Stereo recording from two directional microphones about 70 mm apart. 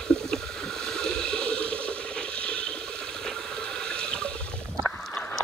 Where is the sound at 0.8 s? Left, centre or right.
Centre.